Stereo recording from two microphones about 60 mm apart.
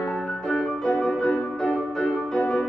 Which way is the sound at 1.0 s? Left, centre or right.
Centre.